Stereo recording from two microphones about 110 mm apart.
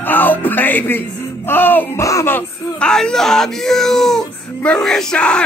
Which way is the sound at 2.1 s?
30° left (ahead or behind).